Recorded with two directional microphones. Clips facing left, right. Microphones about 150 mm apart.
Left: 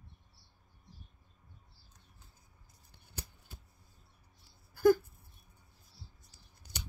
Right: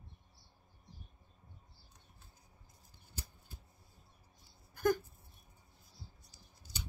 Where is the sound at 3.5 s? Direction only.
75° left (ahead or behind).